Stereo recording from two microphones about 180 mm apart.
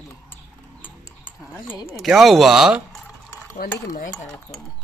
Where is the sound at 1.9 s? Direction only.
Centre (ahead or behind).